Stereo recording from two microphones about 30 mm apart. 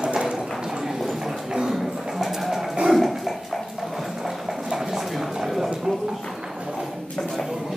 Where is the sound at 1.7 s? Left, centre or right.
Centre.